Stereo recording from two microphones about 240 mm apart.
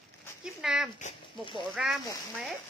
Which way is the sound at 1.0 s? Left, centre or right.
Left.